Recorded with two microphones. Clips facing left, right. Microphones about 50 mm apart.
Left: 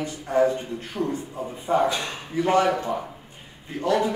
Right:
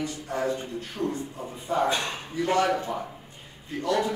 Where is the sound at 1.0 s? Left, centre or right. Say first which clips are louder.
Left 3 dB; left.